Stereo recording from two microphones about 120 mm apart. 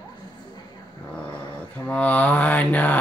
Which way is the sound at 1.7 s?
10° left (ahead or behind).